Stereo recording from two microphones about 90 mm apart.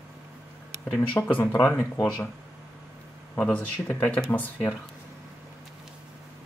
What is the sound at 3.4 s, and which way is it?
Speech, 15° left (ahead or behind).